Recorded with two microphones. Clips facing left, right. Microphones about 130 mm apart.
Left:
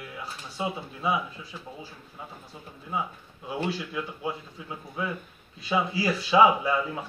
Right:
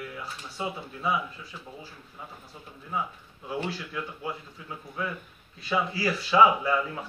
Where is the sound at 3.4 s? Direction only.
20° left (ahead or behind).